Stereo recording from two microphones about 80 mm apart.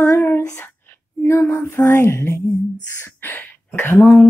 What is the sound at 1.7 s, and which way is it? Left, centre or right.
Speech, left.